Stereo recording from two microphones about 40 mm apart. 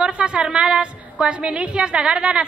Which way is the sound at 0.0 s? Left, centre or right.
Right.